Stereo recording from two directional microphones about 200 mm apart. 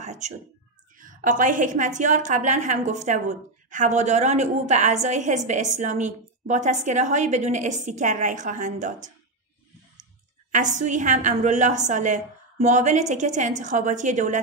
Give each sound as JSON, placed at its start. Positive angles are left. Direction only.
{"t": 0.0, "sound": "a sound", "side_deg": -35}
{"t": 0.9, "sound": "a woman's voice", "side_deg": -40}
{"t": 10.5, "sound": "a woman's voice", "side_deg": -35}